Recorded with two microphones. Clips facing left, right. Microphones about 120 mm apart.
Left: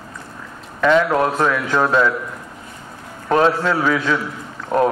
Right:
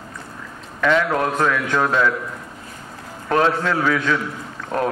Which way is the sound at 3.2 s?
30° left (ahead or behind).